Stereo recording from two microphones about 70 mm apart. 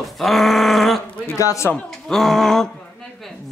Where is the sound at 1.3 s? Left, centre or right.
Left.